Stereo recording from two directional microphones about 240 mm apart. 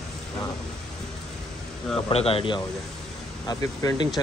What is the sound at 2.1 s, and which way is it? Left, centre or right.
Speech, left.